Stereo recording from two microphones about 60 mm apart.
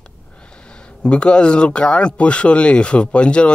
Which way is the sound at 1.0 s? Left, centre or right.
Centre.